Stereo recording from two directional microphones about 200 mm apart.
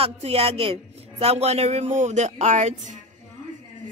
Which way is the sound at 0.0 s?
30° right (ahead or behind).